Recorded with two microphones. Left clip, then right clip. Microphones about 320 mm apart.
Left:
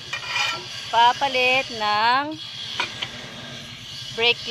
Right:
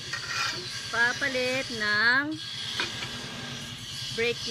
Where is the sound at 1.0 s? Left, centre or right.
Left.